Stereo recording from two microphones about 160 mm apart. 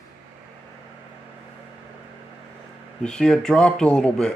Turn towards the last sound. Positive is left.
turn(degrees=5)  # may be behind; listen again after turning